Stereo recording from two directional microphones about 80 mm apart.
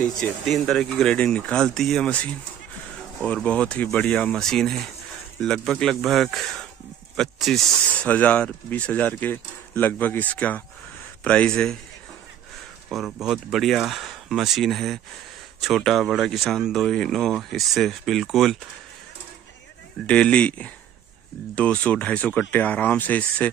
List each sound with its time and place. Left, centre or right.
0.0 s speech: centre
3.3 s speech: centre
4.5 s speech: centre
7.9 s speech: centre
12.9 s speech: centre
20.1 s speech: centre